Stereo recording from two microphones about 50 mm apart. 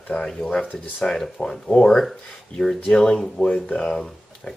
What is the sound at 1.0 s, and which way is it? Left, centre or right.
Speech, centre.